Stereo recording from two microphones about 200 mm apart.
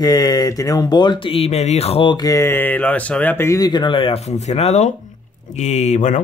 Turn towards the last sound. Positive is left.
turn(degrees=35)  # may be behind; listen again after turning